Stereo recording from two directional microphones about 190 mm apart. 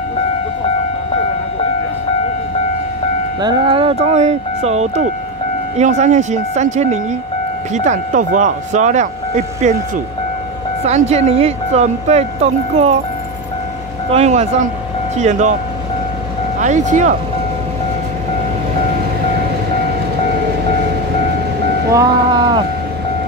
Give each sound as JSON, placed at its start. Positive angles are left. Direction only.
{"t": 3.3, "sound": "speech", "side_deg": -20}
{"t": 14.1, "sound": "speech", "side_deg": -35}
{"t": 16.5, "sound": "speech", "side_deg": -40}
{"t": 21.9, "sound": "a sound", "side_deg": -20}